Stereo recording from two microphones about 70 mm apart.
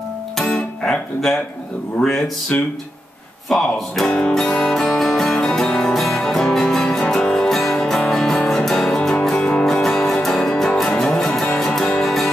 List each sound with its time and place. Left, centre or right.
0.8 s speech: centre
2.5 s speech: centre
3.4 s music: centre